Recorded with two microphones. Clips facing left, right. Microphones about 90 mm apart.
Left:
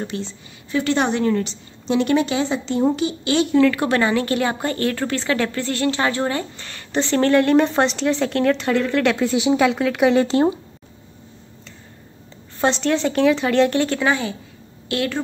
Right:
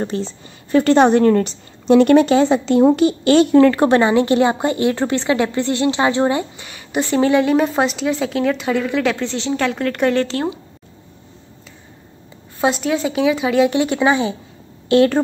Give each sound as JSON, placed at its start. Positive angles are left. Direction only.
{"t": 0.0, "sound": "a woman's voice", "side_deg": -35}
{"t": 3.6, "sound": "speech", "side_deg": -35}
{"t": 9.3, "sound": "a woman's voice", "side_deg": 10}
{"t": 10.2, "sound": "speech", "side_deg": 20}
{"t": 12.5, "sound": "a woman's voice", "side_deg": -5}